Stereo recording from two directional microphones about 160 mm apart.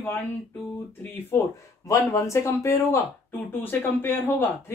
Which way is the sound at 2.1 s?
20° left (ahead or behind).